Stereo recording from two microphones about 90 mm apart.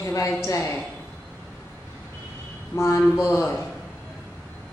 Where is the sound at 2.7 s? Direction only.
30° left (ahead or behind).